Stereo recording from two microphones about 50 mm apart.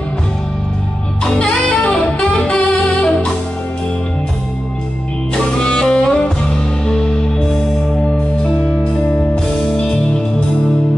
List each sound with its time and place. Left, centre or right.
1.2 s music: centre
5.6 s music: centre
9.1 s music: left